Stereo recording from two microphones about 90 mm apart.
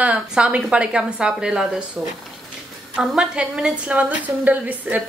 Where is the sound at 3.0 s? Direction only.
5° right (ahead or behind).